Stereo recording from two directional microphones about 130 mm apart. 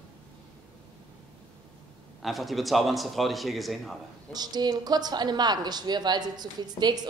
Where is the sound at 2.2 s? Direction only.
Centre (ahead or behind).